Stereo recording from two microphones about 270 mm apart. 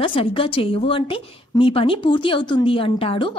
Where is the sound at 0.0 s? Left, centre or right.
Centre.